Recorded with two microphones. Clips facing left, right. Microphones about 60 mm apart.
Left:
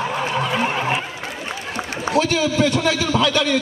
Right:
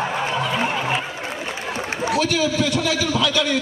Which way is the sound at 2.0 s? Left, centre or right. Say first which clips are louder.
Left 2 dB; left.